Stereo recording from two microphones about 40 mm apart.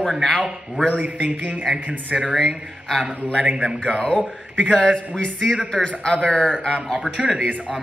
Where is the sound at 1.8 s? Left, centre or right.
Right.